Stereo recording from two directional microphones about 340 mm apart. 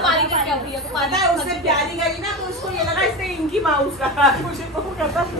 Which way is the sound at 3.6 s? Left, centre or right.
Centre.